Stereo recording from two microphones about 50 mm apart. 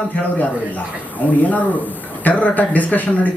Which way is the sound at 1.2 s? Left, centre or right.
Left.